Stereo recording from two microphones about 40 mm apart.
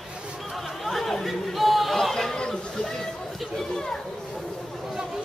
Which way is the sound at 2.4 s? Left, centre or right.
Centre.